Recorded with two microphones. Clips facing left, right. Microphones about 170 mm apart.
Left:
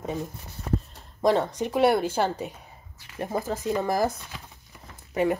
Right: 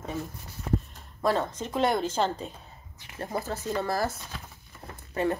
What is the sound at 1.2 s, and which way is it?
Speech, 15° left (ahead or behind).